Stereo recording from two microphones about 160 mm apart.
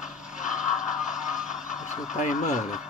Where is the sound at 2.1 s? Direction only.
50° left (ahead or behind).